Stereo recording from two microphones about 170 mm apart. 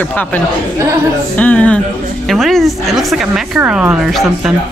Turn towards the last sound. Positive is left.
turn(degrees=0)  # may be behind; listen again after turning